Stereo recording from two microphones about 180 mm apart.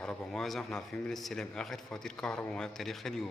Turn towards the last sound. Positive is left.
turn(degrees=0)  # may be behind; listen again after turning